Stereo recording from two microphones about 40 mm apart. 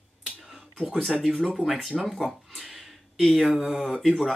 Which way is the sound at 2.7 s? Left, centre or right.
Centre.